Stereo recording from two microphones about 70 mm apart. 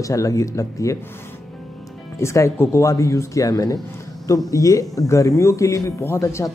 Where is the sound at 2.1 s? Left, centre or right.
Left.